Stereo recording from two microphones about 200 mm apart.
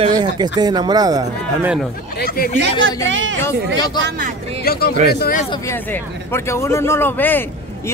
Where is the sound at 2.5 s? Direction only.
60° right (ahead or behind).